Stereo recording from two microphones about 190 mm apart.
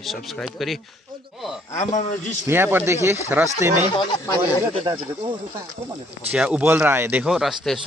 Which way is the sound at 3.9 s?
20° left (ahead or behind).